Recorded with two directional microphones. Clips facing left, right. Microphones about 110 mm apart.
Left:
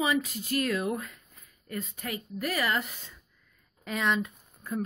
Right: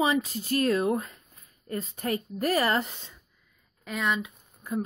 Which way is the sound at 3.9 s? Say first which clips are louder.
Left 1 dB; centre (ahead or behind).